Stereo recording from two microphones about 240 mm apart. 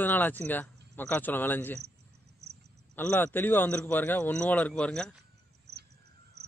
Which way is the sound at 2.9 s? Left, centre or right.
Centre.